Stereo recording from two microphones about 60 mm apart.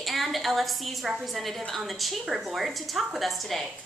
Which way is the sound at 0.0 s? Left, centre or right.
Centre.